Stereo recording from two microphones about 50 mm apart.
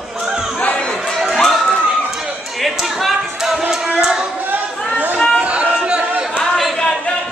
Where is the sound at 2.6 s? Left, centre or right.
Centre.